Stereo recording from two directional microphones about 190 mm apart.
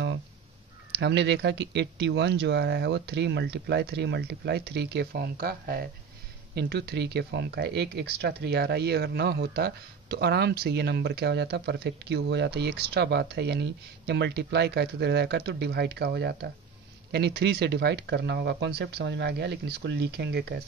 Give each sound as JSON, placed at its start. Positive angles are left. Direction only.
{"t": 0.9, "sound": "speech", "side_deg": -65}